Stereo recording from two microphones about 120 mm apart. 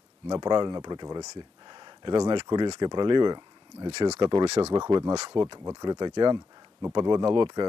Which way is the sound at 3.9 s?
65° right (ahead or behind).